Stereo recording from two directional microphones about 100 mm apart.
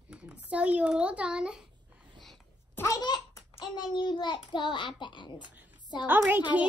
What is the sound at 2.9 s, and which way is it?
A child's voice, 45° left (ahead or behind).